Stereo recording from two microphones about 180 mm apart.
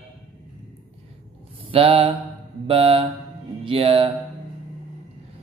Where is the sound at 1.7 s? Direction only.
30° right (ahead or behind).